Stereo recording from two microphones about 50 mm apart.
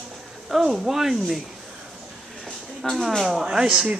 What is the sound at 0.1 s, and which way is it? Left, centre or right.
Speech, centre.